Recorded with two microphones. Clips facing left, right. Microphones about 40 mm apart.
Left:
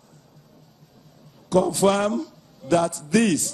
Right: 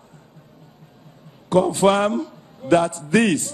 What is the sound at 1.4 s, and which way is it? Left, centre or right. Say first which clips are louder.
A man's voice: right 3 dB; right.